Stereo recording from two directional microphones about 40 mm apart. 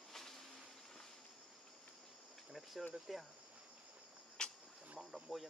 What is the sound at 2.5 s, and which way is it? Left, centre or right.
Cricket, centre.